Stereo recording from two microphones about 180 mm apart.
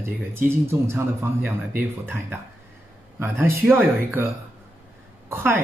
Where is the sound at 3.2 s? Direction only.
10° right (ahead or behind).